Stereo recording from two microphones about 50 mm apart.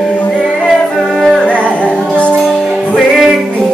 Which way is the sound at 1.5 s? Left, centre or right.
Left.